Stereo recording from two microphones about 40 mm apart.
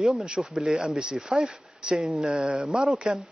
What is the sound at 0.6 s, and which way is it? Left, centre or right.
A man's voice, centre.